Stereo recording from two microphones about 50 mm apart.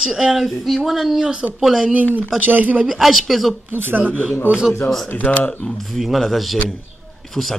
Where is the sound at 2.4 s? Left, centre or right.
Right.